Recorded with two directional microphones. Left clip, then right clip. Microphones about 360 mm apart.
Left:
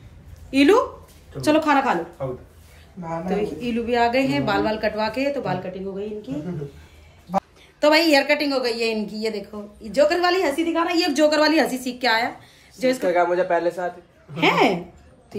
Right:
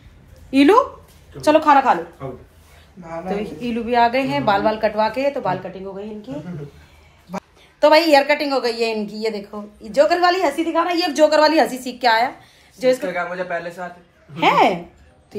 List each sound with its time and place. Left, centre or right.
0.5 s a woman's voice: centre
3.3 s a woman's voice: centre
7.2 s a woman's voice: centre
13.0 s a man's voice: left
14.3 s a woman's voice: centre